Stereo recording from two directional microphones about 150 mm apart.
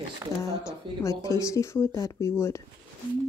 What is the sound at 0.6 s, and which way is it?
Speech, 20° left (ahead or behind).